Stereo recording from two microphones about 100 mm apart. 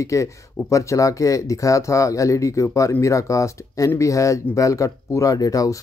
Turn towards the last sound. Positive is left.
turn(degrees=35)  # may be behind; listen again after turning